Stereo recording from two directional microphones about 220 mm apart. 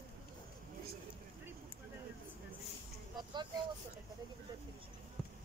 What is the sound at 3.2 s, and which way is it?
Vehicle, 20° right (ahead or behind).